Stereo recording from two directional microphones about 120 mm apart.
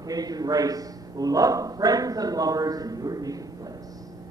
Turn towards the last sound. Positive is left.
turn(degrees=-30)  # may be behind; listen again after turning